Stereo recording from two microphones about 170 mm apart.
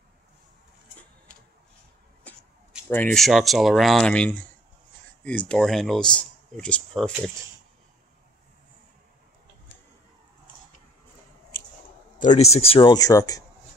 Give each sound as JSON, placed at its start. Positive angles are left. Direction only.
{"t": 2.9, "sound": "speech", "side_deg": 5}
{"t": 12.2, "sound": "speech", "side_deg": 40}